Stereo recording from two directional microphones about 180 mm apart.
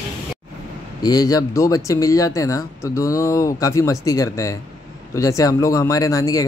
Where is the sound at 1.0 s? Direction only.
20° left (ahead or behind).